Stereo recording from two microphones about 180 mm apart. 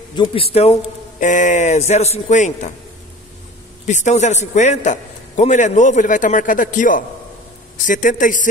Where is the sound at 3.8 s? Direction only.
40° left (ahead or behind).